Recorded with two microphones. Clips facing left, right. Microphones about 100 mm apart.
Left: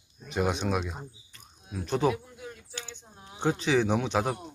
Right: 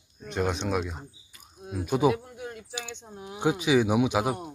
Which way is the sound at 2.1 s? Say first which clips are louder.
Right 4 dB; 65° right (ahead or behind).